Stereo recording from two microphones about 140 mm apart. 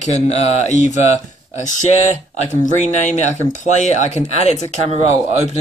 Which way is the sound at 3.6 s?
55° left (ahead or behind).